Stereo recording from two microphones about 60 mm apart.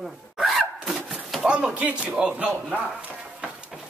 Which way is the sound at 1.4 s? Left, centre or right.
Right.